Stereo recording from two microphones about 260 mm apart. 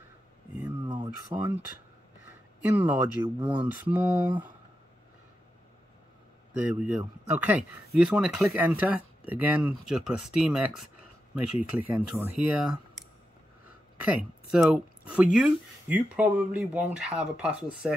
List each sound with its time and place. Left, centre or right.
0.7 s a sound: centre
2.6 s speech: centre
3.3 s speech: centre
3.6 s speech: centre
6.5 s speech: centre
11.9 s speech: centre
14.0 s speech: centre